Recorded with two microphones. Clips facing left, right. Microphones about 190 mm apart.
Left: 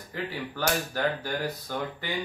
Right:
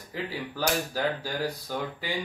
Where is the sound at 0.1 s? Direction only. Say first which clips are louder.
Even; 10° right (ahead or behind).